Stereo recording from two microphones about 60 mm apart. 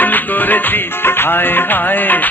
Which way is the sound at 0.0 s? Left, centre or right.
Left.